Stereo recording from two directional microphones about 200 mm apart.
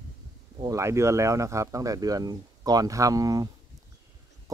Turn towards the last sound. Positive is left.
turn(degrees=-15)  # may be behind; listen again after turning